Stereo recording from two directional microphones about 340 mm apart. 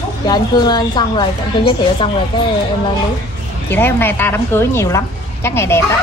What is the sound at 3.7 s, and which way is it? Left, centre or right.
A woman's voice, centre.